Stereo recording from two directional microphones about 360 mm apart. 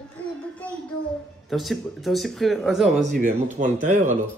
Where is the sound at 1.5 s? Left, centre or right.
Centre.